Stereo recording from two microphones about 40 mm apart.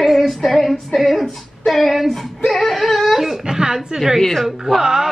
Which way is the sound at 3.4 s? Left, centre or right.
Centre.